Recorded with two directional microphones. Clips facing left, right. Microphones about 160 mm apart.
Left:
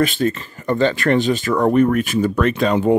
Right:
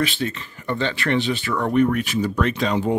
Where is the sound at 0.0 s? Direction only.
45° left (ahead or behind).